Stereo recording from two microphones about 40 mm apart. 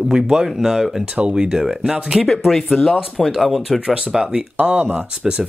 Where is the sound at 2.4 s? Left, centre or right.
Centre.